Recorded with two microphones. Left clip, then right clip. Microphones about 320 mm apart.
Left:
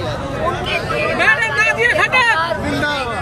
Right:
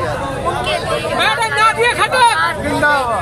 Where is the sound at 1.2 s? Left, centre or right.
Centre.